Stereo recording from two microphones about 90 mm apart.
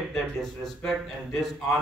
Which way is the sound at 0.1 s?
5° left (ahead or behind).